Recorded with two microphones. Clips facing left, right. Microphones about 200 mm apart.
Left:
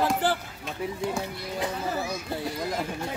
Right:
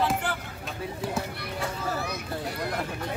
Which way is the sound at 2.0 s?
60° right (ahead or behind).